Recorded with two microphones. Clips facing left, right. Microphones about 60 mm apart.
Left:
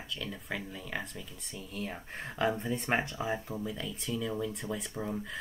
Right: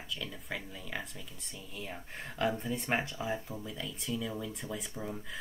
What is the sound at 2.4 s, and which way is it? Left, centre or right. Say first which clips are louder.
Speech: left 2 dB; centre.